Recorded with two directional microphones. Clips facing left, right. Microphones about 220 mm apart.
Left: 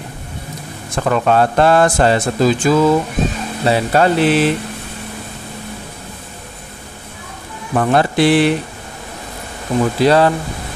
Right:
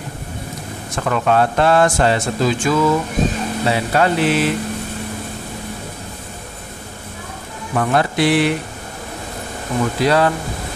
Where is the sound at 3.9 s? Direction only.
35° left (ahead or behind).